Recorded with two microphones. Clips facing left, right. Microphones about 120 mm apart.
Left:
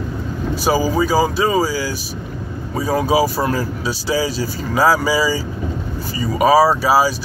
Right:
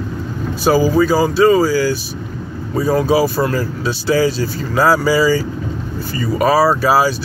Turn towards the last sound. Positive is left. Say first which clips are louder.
# right 1 dB
turn(degrees=10)  # may be behind; listen again after turning